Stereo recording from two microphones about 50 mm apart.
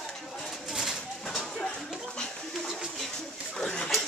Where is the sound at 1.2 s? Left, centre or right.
Centre.